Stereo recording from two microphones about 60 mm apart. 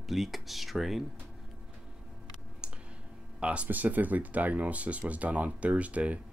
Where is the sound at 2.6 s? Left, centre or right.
Centre.